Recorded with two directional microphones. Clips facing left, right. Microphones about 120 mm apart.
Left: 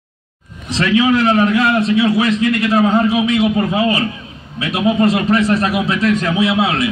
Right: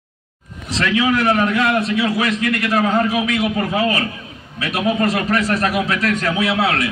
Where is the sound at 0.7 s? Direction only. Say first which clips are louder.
Left 4 dB; 15° left (ahead or behind).